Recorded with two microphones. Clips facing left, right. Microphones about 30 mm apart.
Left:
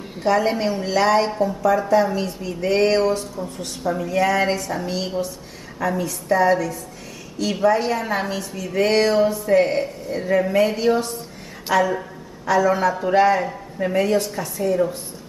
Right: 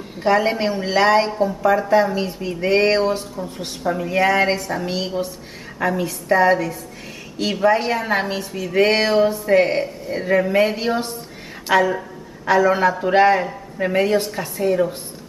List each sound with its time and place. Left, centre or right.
0.2 s speech: right
11.7 s speech: right